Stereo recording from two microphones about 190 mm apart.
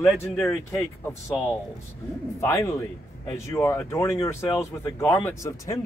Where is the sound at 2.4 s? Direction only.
15° left (ahead or behind).